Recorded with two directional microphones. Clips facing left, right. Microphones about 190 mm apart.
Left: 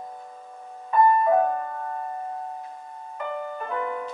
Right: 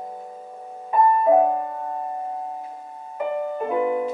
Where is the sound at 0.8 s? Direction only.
15° right (ahead or behind).